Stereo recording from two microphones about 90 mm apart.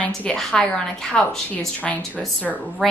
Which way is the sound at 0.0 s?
15° left (ahead or behind).